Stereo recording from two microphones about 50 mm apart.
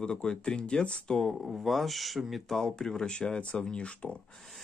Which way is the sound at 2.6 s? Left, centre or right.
Centre.